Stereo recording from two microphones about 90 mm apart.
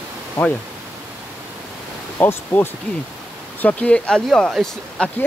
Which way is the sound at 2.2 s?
25° left (ahead or behind).